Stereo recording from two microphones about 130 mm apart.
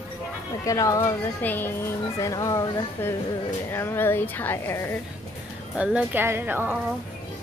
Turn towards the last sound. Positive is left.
turn(degrees=-15)  # may be behind; listen again after turning